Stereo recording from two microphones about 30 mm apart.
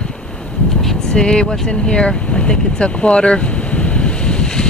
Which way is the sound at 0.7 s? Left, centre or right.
Centre.